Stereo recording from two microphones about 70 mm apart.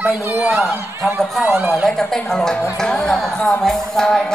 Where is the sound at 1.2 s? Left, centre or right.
Centre.